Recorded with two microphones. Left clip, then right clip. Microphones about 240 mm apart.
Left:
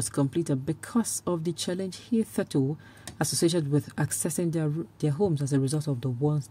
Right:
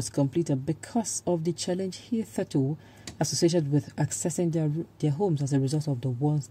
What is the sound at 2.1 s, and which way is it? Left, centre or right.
Speech, centre.